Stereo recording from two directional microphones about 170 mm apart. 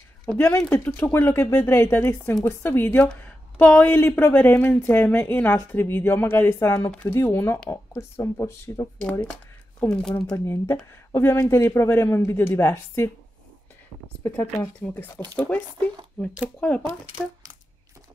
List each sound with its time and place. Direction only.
0.4 s speech: 15° left (ahead or behind)
9.8 s speech: 5° left (ahead or behind)
10.3 s speech: 15° left (ahead or behind)